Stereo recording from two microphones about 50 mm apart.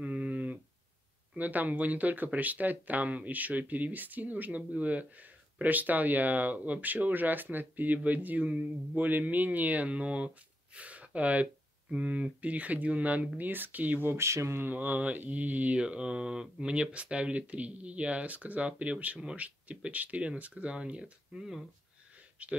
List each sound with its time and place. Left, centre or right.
0.0 s a sound: right
1.3 s speech: right
14.1 s speech: right
14.6 s speech: right
15.8 s speech: right
20.7 s speech: centre
22.4 s speech: right